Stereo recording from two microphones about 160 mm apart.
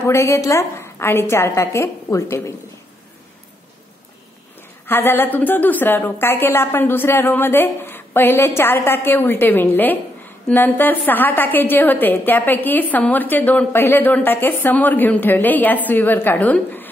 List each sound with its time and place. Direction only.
0.0 s a woman's voice: 15° left (ahead or behind)
4.8 s a woman's voice: 15° left (ahead or behind)